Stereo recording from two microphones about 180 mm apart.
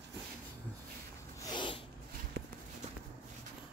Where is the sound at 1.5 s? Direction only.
25° left (ahead or behind).